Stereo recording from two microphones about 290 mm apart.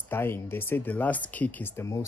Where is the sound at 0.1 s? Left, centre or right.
Centre.